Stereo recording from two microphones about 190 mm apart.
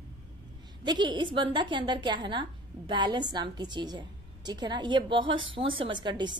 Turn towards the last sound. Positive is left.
turn(degrees=-25)  # may be behind; listen again after turning